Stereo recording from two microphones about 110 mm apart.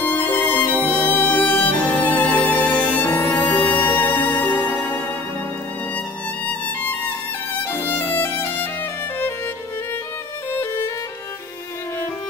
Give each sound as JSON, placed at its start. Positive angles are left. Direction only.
{"t": 0.0, "sound": "music", "side_deg": 15}
{"t": 3.3, "sound": "music", "side_deg": 45}
{"t": 3.8, "sound": "music", "side_deg": 15}
{"t": 6.4, "sound": "music", "side_deg": 15}